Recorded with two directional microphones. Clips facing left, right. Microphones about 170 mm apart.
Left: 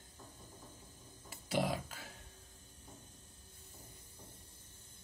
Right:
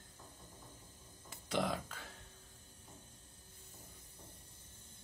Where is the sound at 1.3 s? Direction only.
10° left (ahead or behind).